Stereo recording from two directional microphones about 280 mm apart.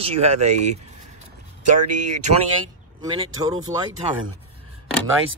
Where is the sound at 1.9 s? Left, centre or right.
Right.